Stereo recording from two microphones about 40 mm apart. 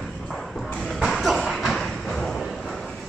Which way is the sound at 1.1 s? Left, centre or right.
Centre.